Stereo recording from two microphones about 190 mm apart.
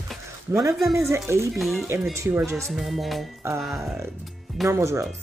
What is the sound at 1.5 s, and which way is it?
Speech, centre (ahead or behind).